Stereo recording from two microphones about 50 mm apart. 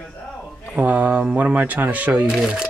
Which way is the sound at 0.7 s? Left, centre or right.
Right.